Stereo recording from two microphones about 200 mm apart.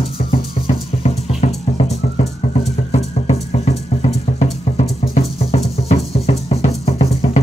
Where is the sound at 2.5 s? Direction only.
35° left (ahead or behind).